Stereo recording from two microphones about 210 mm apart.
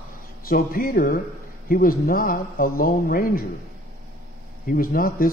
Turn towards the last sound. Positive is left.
turn(degrees=45)  # may be behind; listen again after turning